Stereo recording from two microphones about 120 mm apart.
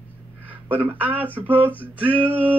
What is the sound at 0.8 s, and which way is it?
Music, 15° right (ahead or behind).